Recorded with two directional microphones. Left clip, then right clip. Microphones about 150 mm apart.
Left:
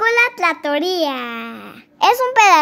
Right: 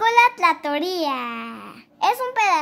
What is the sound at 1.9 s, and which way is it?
Speech, 40° left (ahead or behind).